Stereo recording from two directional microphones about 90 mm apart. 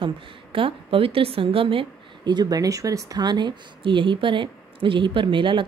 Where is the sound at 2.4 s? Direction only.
45° right (ahead or behind).